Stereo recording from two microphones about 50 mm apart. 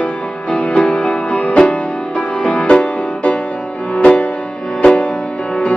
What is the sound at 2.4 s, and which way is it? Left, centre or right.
Music, centre.